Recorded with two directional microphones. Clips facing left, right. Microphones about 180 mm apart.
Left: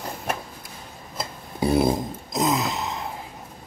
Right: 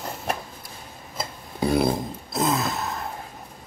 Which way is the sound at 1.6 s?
20° left (ahead or behind).